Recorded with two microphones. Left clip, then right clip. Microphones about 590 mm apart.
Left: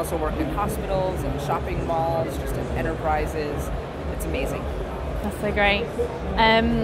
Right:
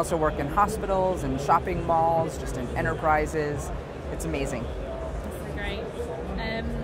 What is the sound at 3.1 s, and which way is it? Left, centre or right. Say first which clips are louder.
Speech: right 2 dB; right.